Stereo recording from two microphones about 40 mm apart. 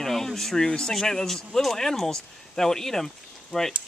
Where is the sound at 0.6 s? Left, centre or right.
Centre.